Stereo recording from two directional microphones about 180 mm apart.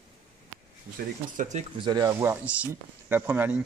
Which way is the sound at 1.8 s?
20° right (ahead or behind).